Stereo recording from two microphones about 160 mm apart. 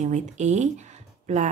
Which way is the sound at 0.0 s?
45° right (ahead or behind).